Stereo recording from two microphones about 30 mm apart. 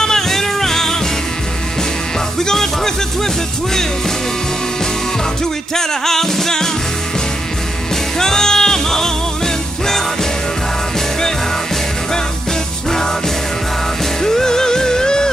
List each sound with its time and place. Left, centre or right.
0.0 s music: centre
2.3 s music: centre
5.8 s music: centre
8.2 s music: centre
14.2 s music: centre